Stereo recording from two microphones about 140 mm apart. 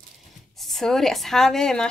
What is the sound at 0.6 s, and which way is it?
Speech, 5° left (ahead or behind).